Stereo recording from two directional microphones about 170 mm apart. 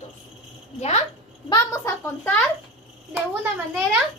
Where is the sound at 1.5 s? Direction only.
20° left (ahead or behind).